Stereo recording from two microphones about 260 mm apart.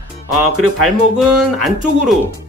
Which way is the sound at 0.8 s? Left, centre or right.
Centre.